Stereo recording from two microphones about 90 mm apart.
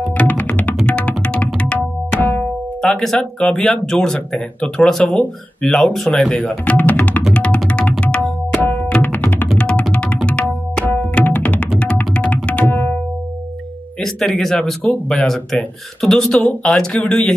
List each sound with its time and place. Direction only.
0.2 s tabla: 15° left (ahead or behind)
2.1 s music: 20° left (ahead or behind)
2.8 s speech: 5° left (ahead or behind)
6.4 s speech: 15° left (ahead or behind)
7.3 s music: 10° left (ahead or behind)
8.0 s tabla: 10° left (ahead or behind)
14.0 s speech: 5° left (ahead or behind)